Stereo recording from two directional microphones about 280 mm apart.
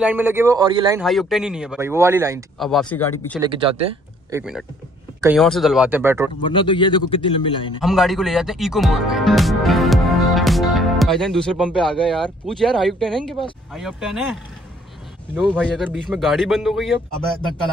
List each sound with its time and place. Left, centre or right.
0.0 s a man's voice: centre
1.0 s speech: centre
2.6 s speech: centre
3.3 s a man's voice: centre
4.3 s speech: centre
6.4 s a man's voice: centre
7.8 s speech: centre